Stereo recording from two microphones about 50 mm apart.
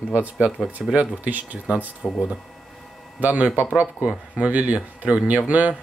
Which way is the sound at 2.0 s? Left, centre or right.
Left.